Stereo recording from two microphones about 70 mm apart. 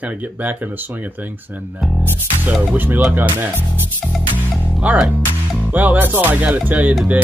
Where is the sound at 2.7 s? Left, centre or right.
Right.